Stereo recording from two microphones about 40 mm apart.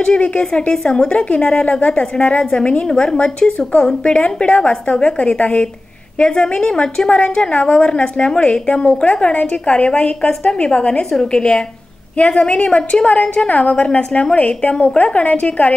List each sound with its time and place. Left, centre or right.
0.0 s a woman's voice: left
12.2 s a woman's voice: left